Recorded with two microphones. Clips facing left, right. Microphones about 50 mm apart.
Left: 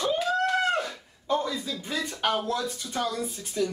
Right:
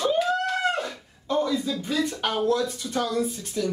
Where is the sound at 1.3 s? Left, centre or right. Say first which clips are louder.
Right 3 dB; centre.